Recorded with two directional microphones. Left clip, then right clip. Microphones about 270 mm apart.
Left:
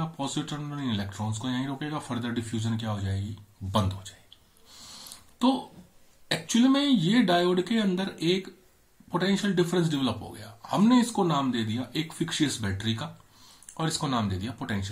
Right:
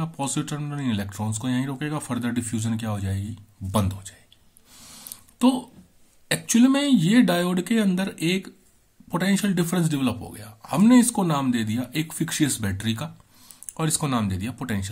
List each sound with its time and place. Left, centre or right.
0.0 s speech: right
6.5 s speech: right